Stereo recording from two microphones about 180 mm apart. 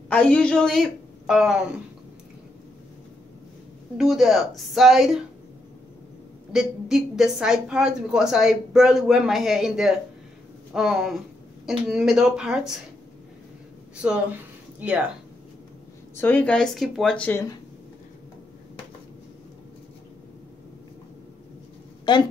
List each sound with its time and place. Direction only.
0.1 s a woman's voice: 5° left (ahead or behind)
4.0 s a woman's voice: centre (ahead or behind)
6.5 s a woman's voice: 5° right (ahead or behind)
14.8 s speech: 5° right (ahead or behind)
16.2 s a woman's voice: 10° left (ahead or behind)
22.1 s a woman's voice: 25° left (ahead or behind)